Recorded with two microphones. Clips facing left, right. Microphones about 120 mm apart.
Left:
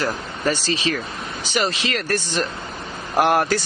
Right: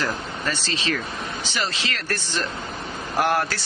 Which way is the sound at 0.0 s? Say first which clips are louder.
Left 4 dB; 15° left (ahead or behind).